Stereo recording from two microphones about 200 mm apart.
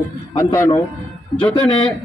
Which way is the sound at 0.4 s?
15° left (ahead or behind).